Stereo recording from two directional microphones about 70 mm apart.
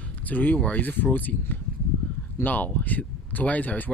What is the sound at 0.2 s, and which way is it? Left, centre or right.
Speech, left.